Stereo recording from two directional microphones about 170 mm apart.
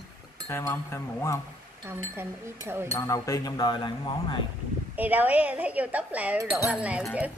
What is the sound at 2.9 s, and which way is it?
Speech, 20° left (ahead or behind).